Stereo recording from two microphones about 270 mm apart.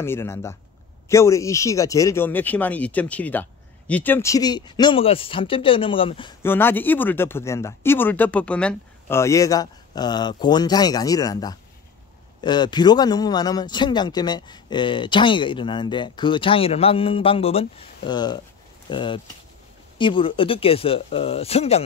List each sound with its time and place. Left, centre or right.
0.0 s a man's voice: centre
6.4 s a man's voice: centre